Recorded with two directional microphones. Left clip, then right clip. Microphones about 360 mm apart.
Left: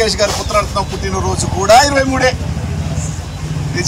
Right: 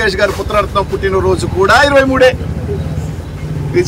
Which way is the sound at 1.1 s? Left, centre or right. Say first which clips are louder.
Right 5 dB; centre.